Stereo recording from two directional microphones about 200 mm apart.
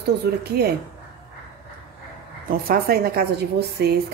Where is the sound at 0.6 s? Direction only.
50° right (ahead or behind).